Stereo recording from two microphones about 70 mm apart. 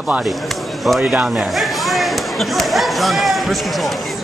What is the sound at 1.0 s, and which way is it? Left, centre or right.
Speech, centre.